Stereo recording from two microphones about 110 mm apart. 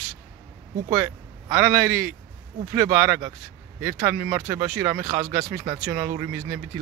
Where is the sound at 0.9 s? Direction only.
30° right (ahead or behind).